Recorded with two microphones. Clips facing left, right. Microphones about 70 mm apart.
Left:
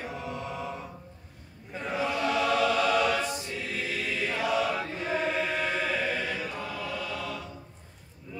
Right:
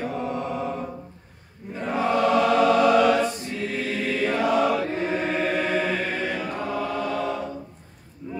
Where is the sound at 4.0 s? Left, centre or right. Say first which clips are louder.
Right 8 dB; right.